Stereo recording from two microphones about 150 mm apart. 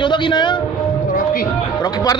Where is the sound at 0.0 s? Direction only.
30° left (ahead or behind).